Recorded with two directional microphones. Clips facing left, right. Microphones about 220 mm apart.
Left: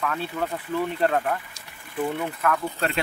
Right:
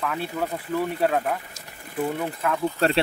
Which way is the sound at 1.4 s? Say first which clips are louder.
Right 4 dB; 45° right (ahead or behind).